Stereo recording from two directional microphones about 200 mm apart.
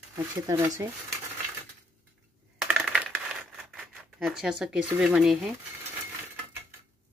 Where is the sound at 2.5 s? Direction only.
5° right (ahead or behind).